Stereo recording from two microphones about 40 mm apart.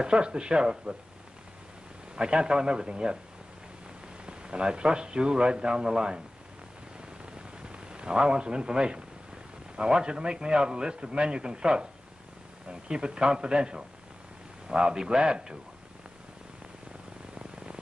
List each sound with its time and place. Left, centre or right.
0.0 s a man's voice: right
2.1 s a man's voice: right
4.3 s a man's voice: right
7.3 s a sound: right
9.8 s a man's voice: right